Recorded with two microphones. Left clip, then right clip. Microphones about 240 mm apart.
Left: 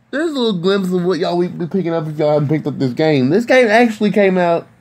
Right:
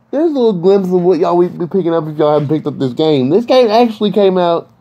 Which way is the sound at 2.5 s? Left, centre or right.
Centre.